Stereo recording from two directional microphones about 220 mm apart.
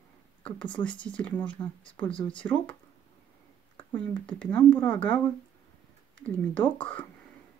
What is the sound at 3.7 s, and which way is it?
Speech, 5° left (ahead or behind).